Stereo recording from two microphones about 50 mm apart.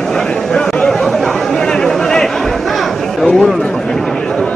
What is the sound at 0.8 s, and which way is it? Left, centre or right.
Chatter, centre.